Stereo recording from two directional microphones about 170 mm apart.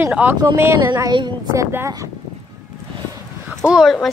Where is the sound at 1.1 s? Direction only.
25° right (ahead or behind).